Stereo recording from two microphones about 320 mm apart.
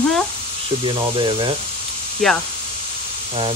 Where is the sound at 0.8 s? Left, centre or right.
Centre.